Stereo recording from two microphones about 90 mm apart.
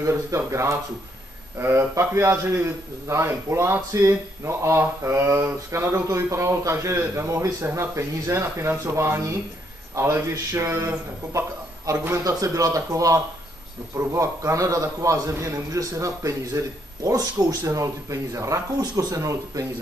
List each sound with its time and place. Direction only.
0.0 s a man's voice: 35° right (ahead or behind)